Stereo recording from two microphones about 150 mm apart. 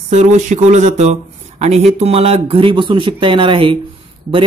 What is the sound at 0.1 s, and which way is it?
Speech, 50° right (ahead or behind).